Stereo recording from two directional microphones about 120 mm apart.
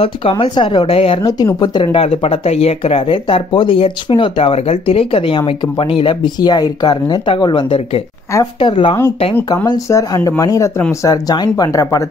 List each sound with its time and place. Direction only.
0.0 s speech: 50° left (ahead or behind)
1.6 s speech: 40° left (ahead or behind)
9.7 s speech: 30° left (ahead or behind)